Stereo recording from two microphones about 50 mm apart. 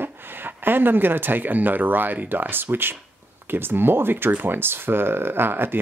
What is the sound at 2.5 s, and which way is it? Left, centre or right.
Speech, right.